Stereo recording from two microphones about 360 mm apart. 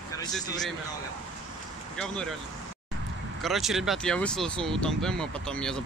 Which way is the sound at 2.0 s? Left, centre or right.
Centre.